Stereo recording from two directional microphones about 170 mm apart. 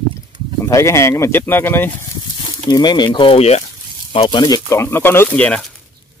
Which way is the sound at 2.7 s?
25° left (ahead or behind).